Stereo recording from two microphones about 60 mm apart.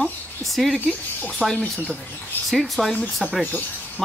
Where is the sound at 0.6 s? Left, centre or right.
Centre.